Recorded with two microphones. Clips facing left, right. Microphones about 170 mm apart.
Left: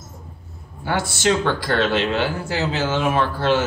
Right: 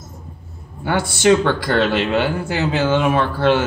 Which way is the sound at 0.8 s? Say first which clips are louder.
Right 5 dB; 60° right (ahead or behind).